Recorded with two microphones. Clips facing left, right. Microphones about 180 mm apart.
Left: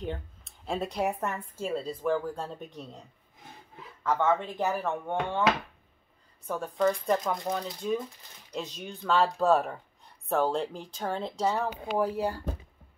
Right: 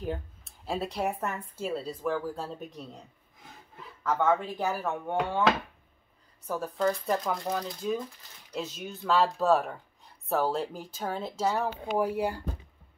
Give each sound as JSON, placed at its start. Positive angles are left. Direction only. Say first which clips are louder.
{"t": 0.7, "sound": "speech", "louder": "left 1 dB", "side_deg": 0}
{"t": 4.1, "sound": "speech", "louder": "even", "side_deg": -5}
{"t": 6.4, "sound": "speech", "louder": "left 1 dB", "side_deg": -5}